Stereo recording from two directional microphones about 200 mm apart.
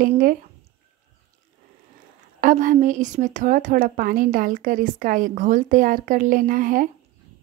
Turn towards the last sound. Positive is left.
turn(degrees=-45)  # may be behind; listen again after turning